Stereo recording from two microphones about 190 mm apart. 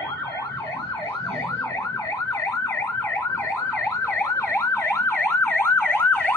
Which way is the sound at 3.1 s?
15° left (ahead or behind).